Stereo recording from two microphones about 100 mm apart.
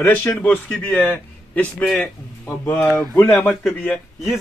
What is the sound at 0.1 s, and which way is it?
A man's voice, 15° left (ahead or behind).